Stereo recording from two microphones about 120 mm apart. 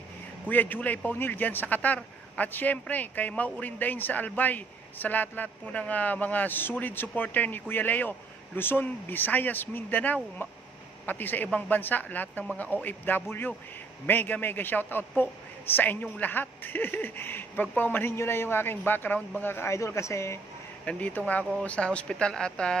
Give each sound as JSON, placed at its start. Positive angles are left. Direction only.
{"t": 0.5, "sound": "a man's voice", "side_deg": 15}
{"t": 20.8, "sound": "a man's voice", "side_deg": 15}